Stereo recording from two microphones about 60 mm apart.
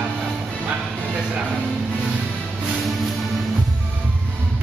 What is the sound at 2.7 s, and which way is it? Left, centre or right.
Music, centre.